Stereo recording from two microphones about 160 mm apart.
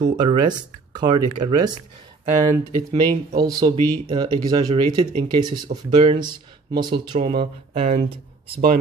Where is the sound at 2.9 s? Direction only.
25° right (ahead or behind); by 8.1 s 40° right (ahead or behind).